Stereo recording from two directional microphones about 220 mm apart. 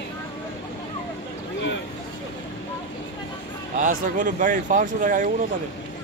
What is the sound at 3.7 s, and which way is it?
Speech, 35° right (ahead or behind).